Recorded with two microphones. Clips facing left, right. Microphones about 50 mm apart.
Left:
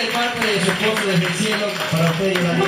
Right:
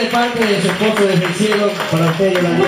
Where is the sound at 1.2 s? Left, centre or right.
Right.